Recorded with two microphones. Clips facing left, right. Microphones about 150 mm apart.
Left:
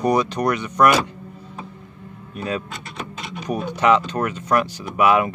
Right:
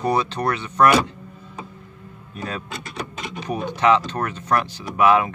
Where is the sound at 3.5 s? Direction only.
10° left (ahead or behind).